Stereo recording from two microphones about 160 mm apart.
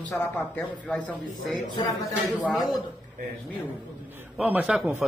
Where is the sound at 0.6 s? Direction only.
10° left (ahead or behind).